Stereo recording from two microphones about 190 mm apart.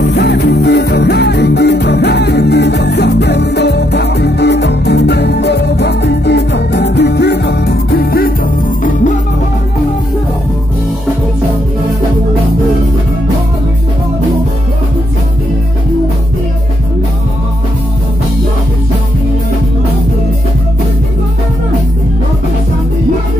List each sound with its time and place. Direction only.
0.1 s music: 60° left (ahead or behind)
8.8 s music: 40° left (ahead or behind)